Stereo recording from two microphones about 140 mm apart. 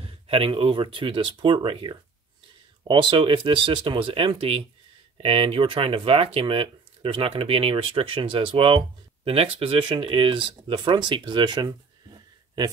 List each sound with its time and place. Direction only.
0.0 s speech: 40° right (ahead or behind)